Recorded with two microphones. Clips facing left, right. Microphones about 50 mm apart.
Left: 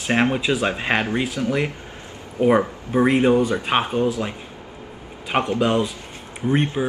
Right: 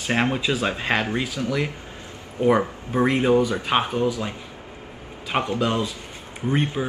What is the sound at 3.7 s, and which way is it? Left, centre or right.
Speech, centre.